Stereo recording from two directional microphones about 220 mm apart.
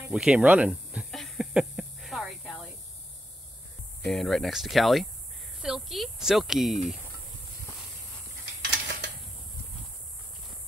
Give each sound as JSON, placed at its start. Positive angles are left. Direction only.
{"t": 0.1, "sound": "a sound", "side_deg": -5}
{"t": 4.1, "sound": "speech", "side_deg": 0}
{"t": 8.7, "sound": "mechanisms", "side_deg": -55}